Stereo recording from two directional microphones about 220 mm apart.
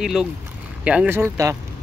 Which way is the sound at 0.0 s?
Centre (ahead or behind).